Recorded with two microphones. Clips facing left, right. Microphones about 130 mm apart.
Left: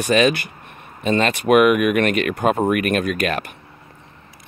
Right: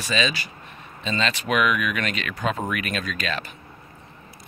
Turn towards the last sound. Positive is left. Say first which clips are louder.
# left 8 dB
turn(degrees=55)  # may be behind; listen again after turning